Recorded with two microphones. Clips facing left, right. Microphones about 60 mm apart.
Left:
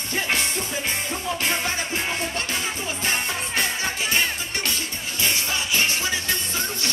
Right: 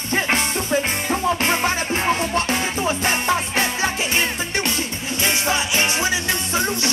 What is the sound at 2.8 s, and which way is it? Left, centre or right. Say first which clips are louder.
Music: right 5 dB; right.